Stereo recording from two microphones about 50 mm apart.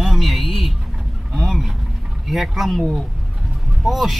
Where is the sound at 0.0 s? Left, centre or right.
Centre.